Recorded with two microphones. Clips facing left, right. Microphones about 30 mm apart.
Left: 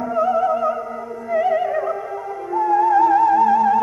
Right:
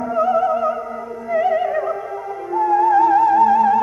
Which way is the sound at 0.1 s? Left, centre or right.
Centre.